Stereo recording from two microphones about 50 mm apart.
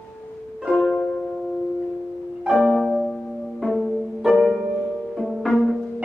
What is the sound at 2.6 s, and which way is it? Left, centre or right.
Music, centre.